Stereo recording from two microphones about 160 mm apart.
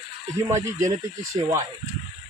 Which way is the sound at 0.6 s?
20° right (ahead or behind).